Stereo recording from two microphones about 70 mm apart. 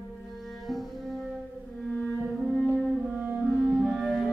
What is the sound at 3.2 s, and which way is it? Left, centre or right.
Music, centre.